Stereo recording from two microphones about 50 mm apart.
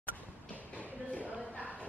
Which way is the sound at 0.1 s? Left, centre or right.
Left.